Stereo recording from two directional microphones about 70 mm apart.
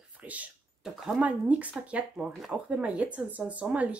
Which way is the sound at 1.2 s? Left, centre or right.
Right.